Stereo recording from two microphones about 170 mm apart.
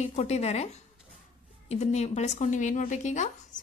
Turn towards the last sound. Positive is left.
turn(degrees=45)  # may be behind; listen again after turning